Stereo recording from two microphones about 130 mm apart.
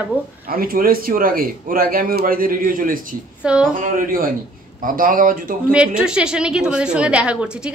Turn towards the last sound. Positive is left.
turn(degrees=-10)  # may be behind; listen again after turning